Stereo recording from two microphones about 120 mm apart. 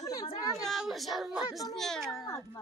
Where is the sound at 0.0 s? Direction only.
30° left (ahead or behind).